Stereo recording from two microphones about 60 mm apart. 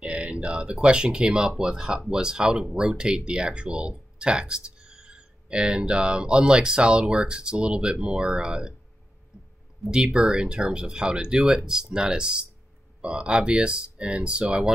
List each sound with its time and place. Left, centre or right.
0.0 s speech: centre
9.8 s speech: centre